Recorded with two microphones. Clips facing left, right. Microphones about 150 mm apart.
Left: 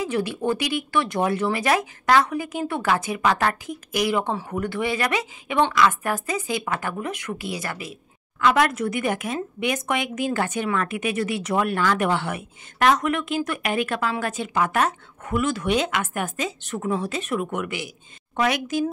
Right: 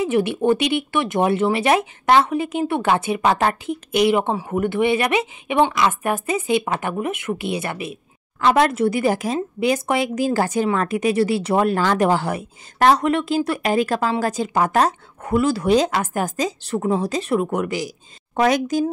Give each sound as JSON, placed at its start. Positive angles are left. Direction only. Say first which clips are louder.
{"t": 0.0, "sound": "speech", "louder": "right 6 dB", "side_deg": -20}